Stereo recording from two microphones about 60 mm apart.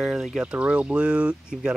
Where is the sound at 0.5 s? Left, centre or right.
Centre.